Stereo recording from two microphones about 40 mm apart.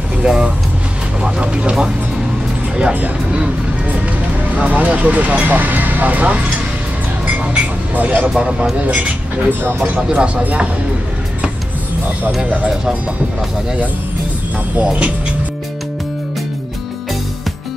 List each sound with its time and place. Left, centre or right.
0.2 s speech: centre
4.6 s speech: right
7.9 s speech: right
8.2 s speech: right
9.5 s speech: right
10.0 s speech: right
14.8 s speech: right